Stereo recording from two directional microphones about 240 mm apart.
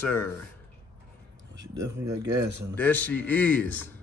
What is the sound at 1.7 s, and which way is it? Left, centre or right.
Speech, right.